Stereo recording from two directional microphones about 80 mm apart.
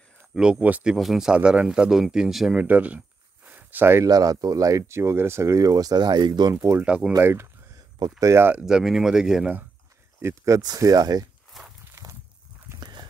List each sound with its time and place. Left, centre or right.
0.4 s speech: centre
0.9 s speech: centre
2.6 s speech: centre
3.4 s a sound: right
4.0 s speech: right
6.8 s speech: centre
7.2 s a sound: right
8.2 s speech: right
8.6 s speech: centre
10.2 s speech: right
11.6 s walk: centre
11.9 s a sound: right
12.8 s dog: right